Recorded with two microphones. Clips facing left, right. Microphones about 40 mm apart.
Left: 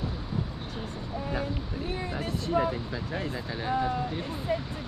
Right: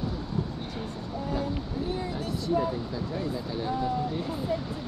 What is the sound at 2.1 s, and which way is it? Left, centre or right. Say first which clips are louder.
Speech: left 1 dB; left.